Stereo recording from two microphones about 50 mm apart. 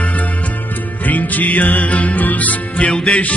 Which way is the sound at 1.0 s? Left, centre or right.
Left.